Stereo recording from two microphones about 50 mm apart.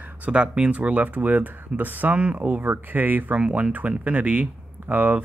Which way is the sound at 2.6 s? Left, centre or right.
Right.